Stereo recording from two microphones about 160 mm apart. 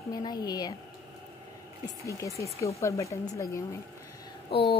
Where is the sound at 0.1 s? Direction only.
25° left (ahead or behind).